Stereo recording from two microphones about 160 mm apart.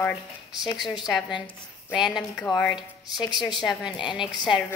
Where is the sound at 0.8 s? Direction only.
Centre (ahead or behind).